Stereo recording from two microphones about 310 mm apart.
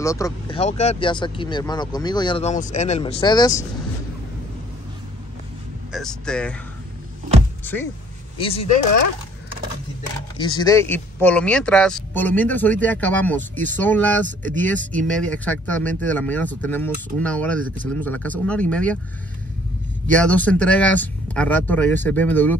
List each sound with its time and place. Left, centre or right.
0.0 s speech: centre
5.9 s speech: centre
7.6 s speech: centre
8.4 s speech: centre
10.3 s speech: centre
14.2 s speech: right
14.6 s speech: centre
20.1 s speech: centre